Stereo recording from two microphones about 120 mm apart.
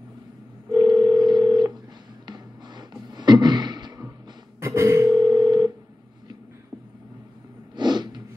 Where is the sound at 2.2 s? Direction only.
35° right (ahead or behind).